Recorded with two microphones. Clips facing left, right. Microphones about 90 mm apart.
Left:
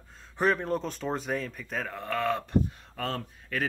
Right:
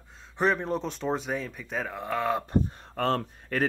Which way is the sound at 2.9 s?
45° right (ahead or behind).